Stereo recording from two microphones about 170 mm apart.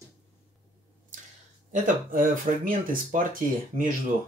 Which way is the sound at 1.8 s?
55° right (ahead or behind).